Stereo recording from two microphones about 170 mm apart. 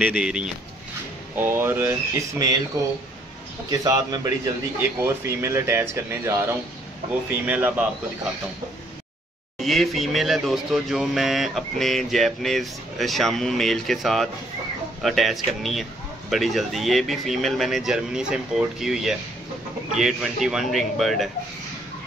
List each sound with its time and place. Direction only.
0.0 s a man's voice: 5° right (ahead or behind)
9.6 s speech: centre (ahead or behind)